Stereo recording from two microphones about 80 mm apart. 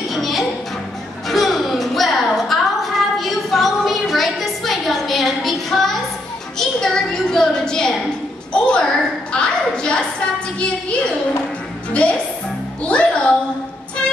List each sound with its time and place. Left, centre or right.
0.1 s music: centre
1.3 s a sound: centre
11.9 s a woman's voice: centre